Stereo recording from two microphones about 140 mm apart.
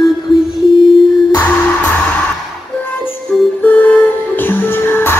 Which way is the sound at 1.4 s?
10° left (ahead or behind).